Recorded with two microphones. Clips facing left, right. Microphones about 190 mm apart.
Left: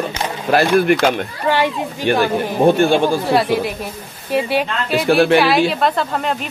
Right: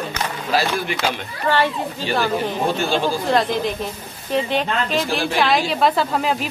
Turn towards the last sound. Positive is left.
turn(degrees=0)  # may be behind; listen again after turning